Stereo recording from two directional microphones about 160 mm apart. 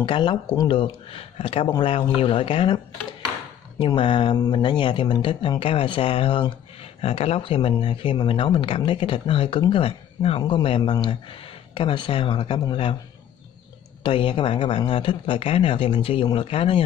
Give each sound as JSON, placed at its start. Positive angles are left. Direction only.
{"t": 0.0, "sound": "speech", "side_deg": 30}
{"t": 3.8, "sound": "speech", "side_deg": 35}
{"t": 14.0, "sound": "speech", "side_deg": 30}